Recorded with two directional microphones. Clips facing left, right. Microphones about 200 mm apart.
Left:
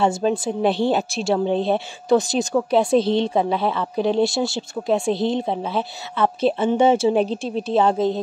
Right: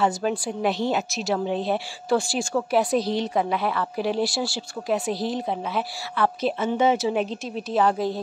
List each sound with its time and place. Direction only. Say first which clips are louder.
0.0 s a woman's voice: left 4 dB; 25° left (ahead or behind)